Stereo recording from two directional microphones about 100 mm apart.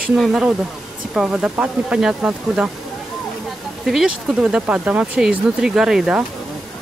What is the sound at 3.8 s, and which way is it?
Speech, 5° right (ahead or behind).